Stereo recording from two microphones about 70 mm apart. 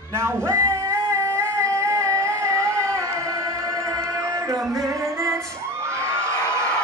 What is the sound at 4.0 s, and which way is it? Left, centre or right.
Music, right.